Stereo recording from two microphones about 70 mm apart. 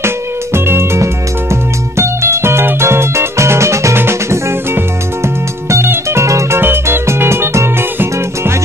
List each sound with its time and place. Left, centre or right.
0.0 s music: right
6.6 s music: right